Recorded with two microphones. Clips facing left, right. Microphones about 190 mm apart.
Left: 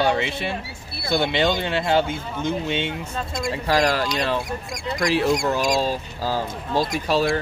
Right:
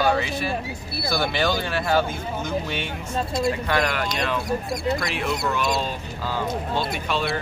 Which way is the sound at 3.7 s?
35° left (ahead or behind).